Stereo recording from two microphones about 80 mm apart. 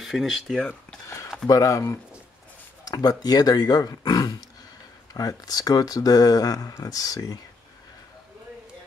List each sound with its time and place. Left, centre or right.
0.0 s speech: centre
1.5 s speech: left